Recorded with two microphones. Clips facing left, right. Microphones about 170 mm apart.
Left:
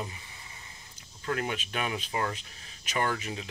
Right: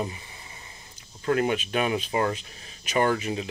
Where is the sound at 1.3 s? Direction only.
15° right (ahead or behind).